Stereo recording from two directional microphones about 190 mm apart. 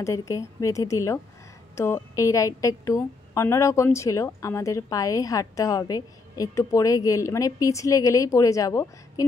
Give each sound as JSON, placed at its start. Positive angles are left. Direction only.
{"t": 0.0, "sound": "a woman's voice", "side_deg": 15}